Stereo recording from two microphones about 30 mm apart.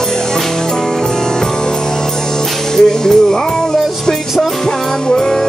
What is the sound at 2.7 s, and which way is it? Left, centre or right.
Speech, centre.